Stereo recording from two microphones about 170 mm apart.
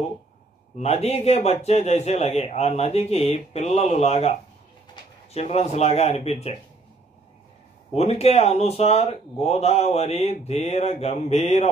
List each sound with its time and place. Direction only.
0.7 s speech: 40° left (ahead or behind)
7.9 s speech: 40° left (ahead or behind)